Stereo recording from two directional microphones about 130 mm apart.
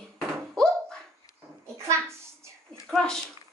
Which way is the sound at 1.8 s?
20° right (ahead or behind).